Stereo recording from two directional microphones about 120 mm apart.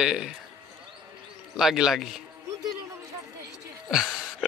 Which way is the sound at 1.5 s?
5° right (ahead or behind).